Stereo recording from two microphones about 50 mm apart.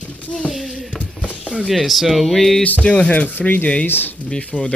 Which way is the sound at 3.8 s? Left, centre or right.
Left.